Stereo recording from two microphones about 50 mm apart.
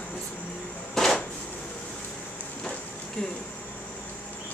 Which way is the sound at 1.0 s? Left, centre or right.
Centre.